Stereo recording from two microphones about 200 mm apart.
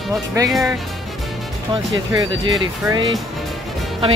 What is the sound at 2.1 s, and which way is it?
Speech, 25° right (ahead or behind).